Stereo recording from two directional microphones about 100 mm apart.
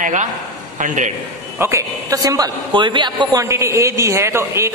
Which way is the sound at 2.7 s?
50° right (ahead or behind).